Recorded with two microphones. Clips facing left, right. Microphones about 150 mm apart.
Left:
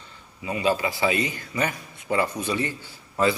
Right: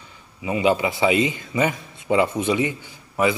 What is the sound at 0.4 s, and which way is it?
A man's voice, 20° right (ahead or behind).